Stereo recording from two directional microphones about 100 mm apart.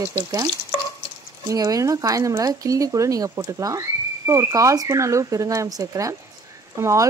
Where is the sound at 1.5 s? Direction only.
35° right (ahead or behind).